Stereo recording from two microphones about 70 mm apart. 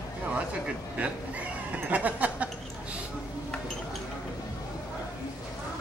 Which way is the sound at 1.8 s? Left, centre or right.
Right.